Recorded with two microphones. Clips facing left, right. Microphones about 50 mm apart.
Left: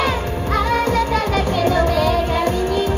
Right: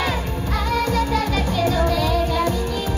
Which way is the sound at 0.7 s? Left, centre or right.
Left.